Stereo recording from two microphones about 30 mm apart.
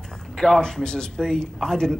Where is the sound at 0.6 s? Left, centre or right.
Left.